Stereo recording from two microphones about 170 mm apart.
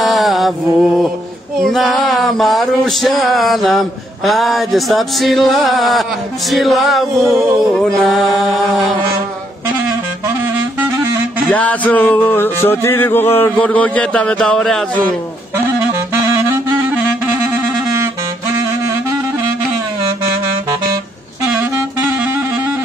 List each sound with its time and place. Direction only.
0.0 s mantra: centre (ahead or behind)
1.6 s male singing: centre (ahead or behind)
6.5 s music: centre (ahead or behind)
11.4 s a sound: 10° left (ahead or behind)
15.5 s saxophone: 15° right (ahead or behind)